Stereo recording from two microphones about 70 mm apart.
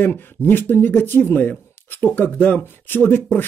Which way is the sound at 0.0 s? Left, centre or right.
Left.